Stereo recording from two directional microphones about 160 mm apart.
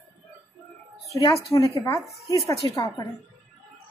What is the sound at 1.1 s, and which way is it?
Speech, 20° left (ahead or behind).